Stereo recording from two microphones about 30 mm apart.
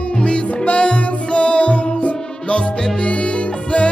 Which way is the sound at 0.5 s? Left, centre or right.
Left.